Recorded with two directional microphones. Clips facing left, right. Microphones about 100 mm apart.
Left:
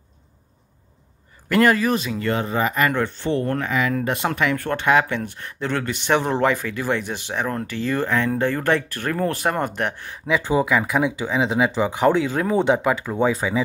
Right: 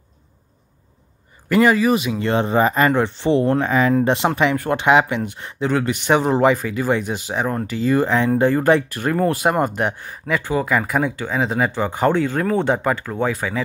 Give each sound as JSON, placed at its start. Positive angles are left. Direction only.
{"t": 1.5, "sound": "speech", "side_deg": 0}
{"t": 2.0, "sound": "speech", "side_deg": -25}
{"t": 2.9, "sound": "speech", "side_deg": -20}
{"t": 3.5, "sound": "speech", "side_deg": -30}
{"t": 10.4, "sound": "speech", "side_deg": 15}
{"t": 10.7, "sound": "speech", "side_deg": 0}